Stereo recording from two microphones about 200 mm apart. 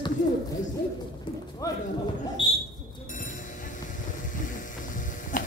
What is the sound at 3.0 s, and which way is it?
Music, 40° left (ahead or behind).